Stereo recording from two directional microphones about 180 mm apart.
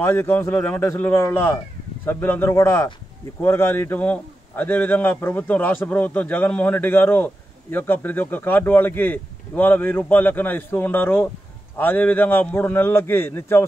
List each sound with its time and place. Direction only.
0.0 s a man's voice: 15° left (ahead or behind)